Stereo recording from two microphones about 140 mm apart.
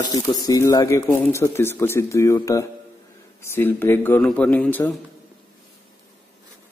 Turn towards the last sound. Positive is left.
turn(degrees=10)  # may be behind; listen again after turning